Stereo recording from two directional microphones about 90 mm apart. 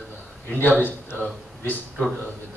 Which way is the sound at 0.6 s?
20° left (ahead or behind).